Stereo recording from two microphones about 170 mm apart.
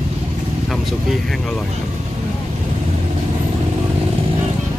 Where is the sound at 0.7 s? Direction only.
Centre (ahead or behind).